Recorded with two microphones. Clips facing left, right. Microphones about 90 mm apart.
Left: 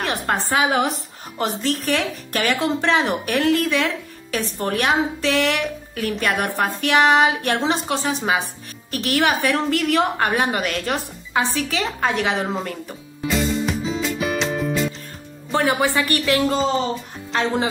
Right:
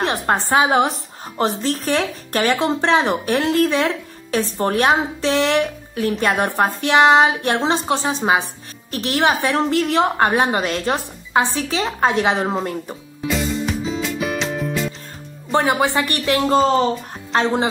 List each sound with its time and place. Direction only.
0.0 s a woman's voice: 30° right (ahead or behind)
13.3 s music: centre (ahead or behind)
15.6 s a woman's voice: 20° right (ahead or behind)
17.3 s speech: 35° right (ahead or behind)